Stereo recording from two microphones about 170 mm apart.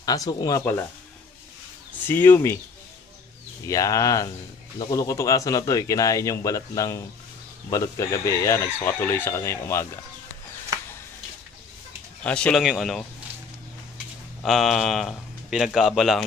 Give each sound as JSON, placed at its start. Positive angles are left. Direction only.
{"t": 0.0, "sound": "speech", "side_deg": 20}
{"t": 2.0, "sound": "speech", "side_deg": 10}
{"t": 3.6, "sound": "speech", "side_deg": 20}
{"t": 12.2, "sound": "speech", "side_deg": 5}
{"t": 14.4, "sound": "speech", "side_deg": 0}